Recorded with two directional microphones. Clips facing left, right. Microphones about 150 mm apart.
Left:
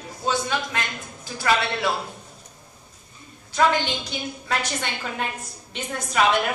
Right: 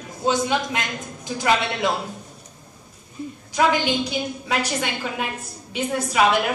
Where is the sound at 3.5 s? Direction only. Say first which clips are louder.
Right 1 dB; 10° right (ahead or behind).